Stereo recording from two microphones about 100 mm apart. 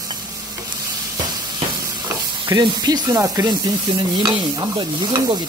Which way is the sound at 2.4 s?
50° right (ahead or behind).